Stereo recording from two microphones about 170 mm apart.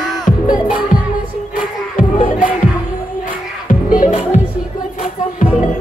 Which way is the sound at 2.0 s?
55° left (ahead or behind).